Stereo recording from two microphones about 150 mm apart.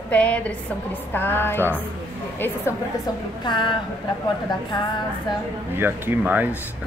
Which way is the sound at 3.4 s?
30° left (ahead or behind).